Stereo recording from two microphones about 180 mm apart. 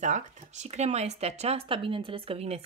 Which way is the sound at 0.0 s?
40° right (ahead or behind).